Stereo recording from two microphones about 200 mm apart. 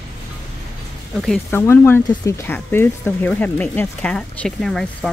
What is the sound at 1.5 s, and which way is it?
Speech, 10° left (ahead or behind).